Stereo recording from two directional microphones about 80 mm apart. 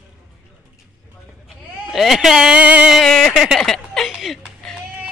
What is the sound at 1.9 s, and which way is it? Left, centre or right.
Speech, centre.